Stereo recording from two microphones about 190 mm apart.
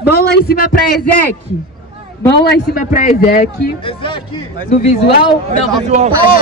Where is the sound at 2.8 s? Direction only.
45° left (ahead or behind).